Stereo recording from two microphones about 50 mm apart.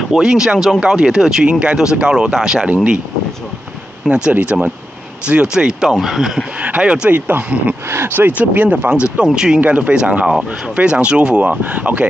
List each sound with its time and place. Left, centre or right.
0.1 s speech: centre
2.6 s speech: right
4.1 s speech: right
5.6 s speech: centre
6.6 s speech: right
7.9 s speech: right
8.3 s speech: right
9.6 s speech: right